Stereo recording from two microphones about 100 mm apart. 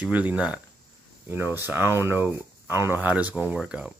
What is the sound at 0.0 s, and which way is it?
Speech, 15° right (ahead or behind).